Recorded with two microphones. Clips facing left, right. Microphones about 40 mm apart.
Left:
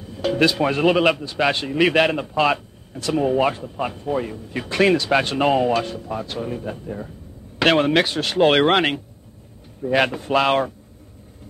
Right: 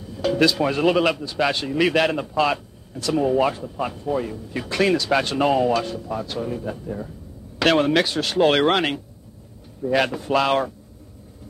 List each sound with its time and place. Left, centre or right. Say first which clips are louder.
0.0 s a man's voice: even; left